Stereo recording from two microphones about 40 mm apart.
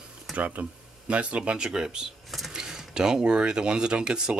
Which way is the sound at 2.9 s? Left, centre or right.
Centre.